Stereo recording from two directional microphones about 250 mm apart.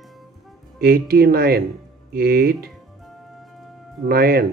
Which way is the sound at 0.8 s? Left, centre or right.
Right.